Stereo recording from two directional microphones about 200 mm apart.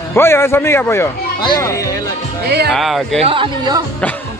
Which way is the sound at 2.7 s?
Centre (ahead or behind).